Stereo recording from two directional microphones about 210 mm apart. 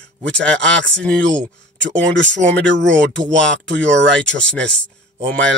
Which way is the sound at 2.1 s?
60° right (ahead or behind).